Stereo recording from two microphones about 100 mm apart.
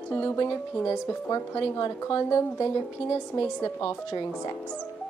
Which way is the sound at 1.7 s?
35° left (ahead or behind).